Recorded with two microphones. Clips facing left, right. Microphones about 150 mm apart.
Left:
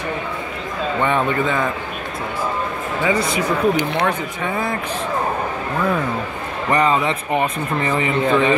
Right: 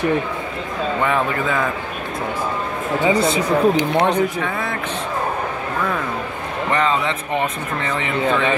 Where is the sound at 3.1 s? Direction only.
25° right (ahead or behind).